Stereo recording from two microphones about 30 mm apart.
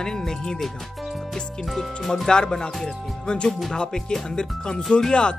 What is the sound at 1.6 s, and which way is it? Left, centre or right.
Speech, centre.